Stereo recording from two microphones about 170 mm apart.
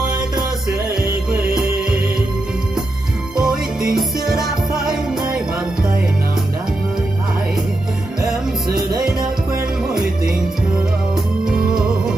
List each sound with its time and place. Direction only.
0.9 s music: 5° right (ahead or behind)
3.3 s music: 5° right (ahead or behind)